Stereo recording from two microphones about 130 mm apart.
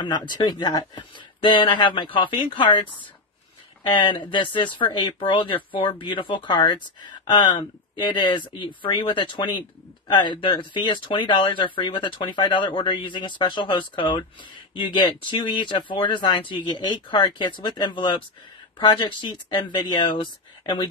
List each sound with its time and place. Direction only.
0.0 s speech: 35° left (ahead or behind)